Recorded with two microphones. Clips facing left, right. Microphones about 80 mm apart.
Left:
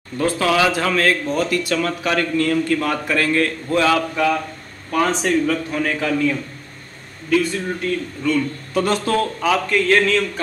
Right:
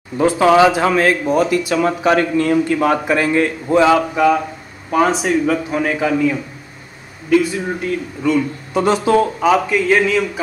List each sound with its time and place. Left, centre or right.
0.2 s speech: centre